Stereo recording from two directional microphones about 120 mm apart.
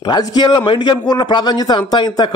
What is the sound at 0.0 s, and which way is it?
A man's voice, 35° left (ahead or behind).